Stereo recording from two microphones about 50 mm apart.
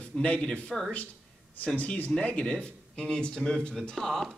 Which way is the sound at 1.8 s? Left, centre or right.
Left.